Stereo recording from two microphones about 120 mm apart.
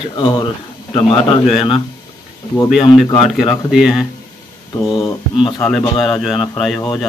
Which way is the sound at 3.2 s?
Centre (ahead or behind).